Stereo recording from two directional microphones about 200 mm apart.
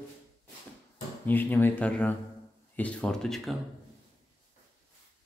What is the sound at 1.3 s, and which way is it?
Speech, 10° left (ahead or behind).